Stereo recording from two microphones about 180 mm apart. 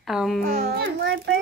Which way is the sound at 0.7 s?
70° right (ahead or behind).